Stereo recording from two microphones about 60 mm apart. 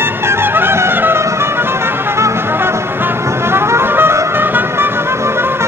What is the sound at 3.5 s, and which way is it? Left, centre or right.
Music, right.